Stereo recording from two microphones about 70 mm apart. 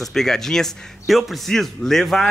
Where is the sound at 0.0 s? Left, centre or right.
Centre.